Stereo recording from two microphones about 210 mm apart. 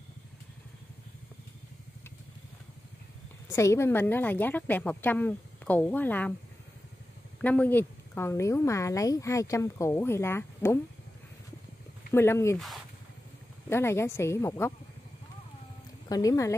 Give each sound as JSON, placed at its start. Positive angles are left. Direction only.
{"t": 3.4, "sound": "speech", "side_deg": 15}
{"t": 7.4, "sound": "speech", "side_deg": 5}
{"t": 12.1, "sound": "speech", "side_deg": 10}
{"t": 12.5, "sound": "speech", "side_deg": 0}
{"t": 13.7, "sound": "speech", "side_deg": 10}
{"t": 16.1, "sound": "speech", "side_deg": 15}